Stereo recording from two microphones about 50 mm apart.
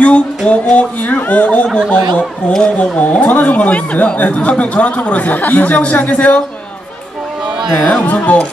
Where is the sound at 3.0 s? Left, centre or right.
Left.